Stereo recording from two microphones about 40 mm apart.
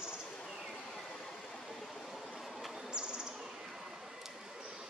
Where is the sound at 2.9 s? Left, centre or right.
Right.